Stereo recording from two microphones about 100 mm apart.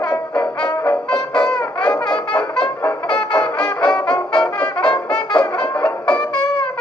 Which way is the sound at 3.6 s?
10° left (ahead or behind).